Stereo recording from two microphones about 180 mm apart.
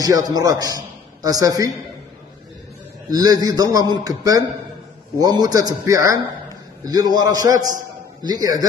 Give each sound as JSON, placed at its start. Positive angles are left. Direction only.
{"t": 0.0, "sound": "a man's voice", "side_deg": -20}
{"t": 3.1, "sound": "a man's voice", "side_deg": -20}